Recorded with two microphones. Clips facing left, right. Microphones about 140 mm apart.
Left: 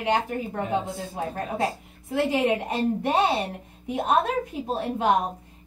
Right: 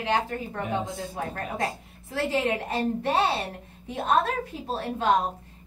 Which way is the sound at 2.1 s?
15° left (ahead or behind).